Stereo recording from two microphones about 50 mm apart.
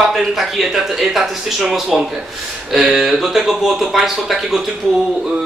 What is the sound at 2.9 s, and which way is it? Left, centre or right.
Speech, centre.